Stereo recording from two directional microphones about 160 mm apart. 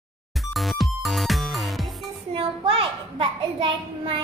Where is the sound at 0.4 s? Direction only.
Centre (ahead or behind).